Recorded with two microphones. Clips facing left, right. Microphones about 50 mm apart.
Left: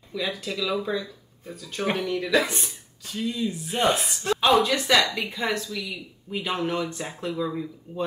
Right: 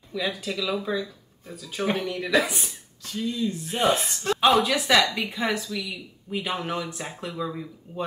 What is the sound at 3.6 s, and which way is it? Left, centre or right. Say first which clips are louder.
Speech: even; centre.